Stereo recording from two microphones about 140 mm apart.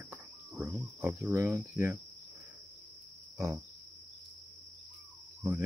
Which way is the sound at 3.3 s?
20° right (ahead or behind).